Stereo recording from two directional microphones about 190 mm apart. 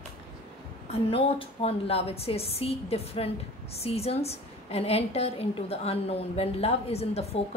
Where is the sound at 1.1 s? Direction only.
30° left (ahead or behind).